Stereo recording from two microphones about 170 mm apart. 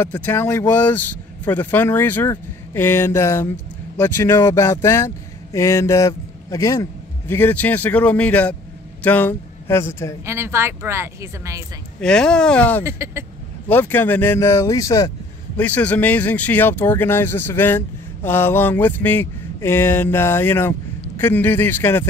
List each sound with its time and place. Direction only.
0.0 s speech: 10° left (ahead or behind)
10.2 s a woman's voice: 15° right (ahead or behind)
12.0 s speech: 5° left (ahead or behind)
12.8 s a woman's voice: 15° right (ahead or behind)
13.7 s speech: 10° left (ahead or behind)